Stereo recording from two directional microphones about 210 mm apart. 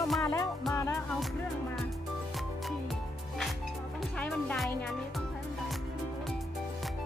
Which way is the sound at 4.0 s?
5° left (ahead or behind).